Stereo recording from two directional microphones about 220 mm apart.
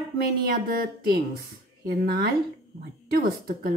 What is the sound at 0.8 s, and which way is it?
Speech, 45° right (ahead or behind).